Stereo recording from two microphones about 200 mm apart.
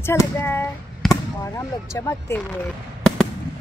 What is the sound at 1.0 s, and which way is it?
Basketball bounce, centre (ahead or behind).